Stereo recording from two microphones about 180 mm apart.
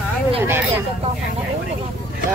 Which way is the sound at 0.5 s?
10° right (ahead or behind).